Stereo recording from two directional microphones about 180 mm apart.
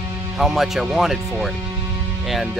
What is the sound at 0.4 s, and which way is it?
Speech, centre (ahead or behind).